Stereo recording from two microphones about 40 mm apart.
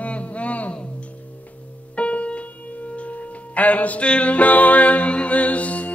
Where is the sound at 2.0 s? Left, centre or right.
Left.